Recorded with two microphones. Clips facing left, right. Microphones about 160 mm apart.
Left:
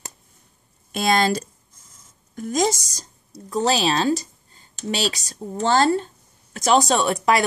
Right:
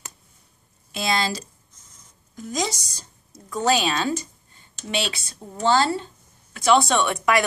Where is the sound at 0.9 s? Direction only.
50° left (ahead or behind).